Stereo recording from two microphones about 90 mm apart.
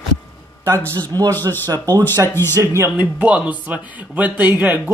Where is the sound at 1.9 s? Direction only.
25° left (ahead or behind).